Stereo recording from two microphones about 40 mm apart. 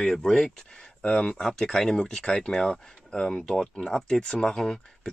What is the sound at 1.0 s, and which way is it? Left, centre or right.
Speech, left.